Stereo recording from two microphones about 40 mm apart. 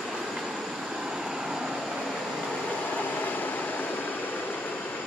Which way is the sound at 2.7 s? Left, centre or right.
Left.